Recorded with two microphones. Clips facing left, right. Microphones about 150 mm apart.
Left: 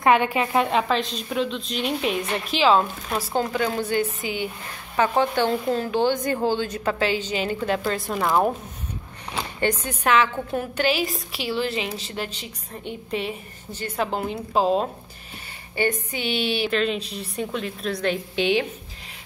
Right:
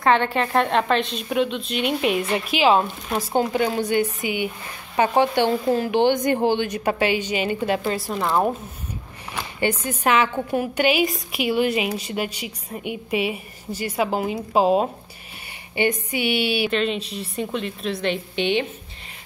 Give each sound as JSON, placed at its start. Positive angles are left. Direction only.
{"t": 0.0, "sound": "a woman's voice", "side_deg": 10}
{"t": 8.1, "sound": "speech", "side_deg": 0}
{"t": 9.8, "sound": "a woman's voice", "side_deg": -10}